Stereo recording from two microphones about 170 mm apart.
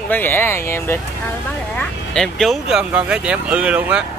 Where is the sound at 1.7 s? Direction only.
5° left (ahead or behind).